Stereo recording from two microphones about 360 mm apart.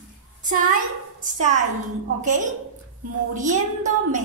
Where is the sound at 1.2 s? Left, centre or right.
Right.